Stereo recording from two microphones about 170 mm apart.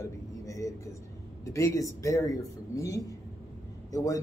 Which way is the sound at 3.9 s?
20° left (ahead or behind).